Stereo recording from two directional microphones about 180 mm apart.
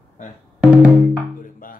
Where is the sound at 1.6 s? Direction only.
50° left (ahead or behind).